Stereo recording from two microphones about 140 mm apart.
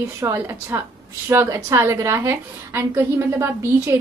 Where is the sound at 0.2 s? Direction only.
15° right (ahead or behind).